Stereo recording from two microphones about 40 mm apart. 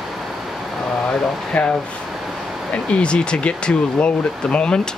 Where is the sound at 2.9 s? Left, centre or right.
Left.